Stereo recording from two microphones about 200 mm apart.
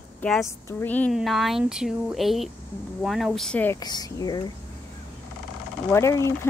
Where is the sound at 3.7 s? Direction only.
20° left (ahead or behind).